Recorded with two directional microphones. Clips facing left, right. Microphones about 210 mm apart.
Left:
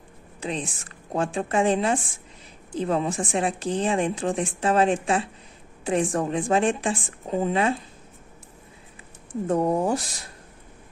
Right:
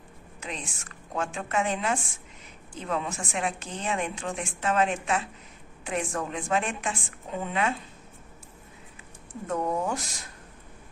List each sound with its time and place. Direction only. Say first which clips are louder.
0.4 s speech: left 8 dB; 35° left (ahead or behind)
9.5 s speech: left 6 dB; 35° left (ahead or behind)